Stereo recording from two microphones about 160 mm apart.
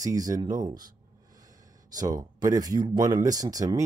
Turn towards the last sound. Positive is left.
turn(degrees=-20)  # may be behind; listen again after turning